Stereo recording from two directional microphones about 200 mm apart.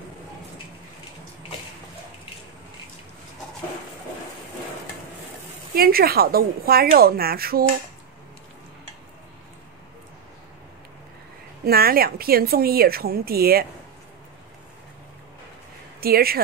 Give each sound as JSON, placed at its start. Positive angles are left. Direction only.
{"t": 5.8, "sound": "speech", "side_deg": -50}
{"t": 11.6, "sound": "speech", "side_deg": -50}
{"t": 16.0, "sound": "speech", "side_deg": -50}